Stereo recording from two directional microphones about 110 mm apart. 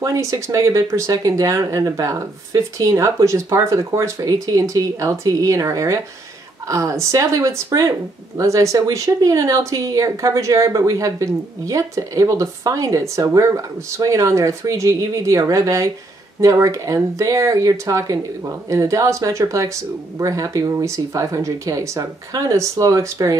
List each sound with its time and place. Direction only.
0.0 s speech: 30° right (ahead or behind)